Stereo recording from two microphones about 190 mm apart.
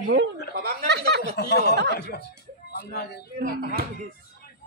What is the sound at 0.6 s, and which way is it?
Chuckle, 55° right (ahead or behind).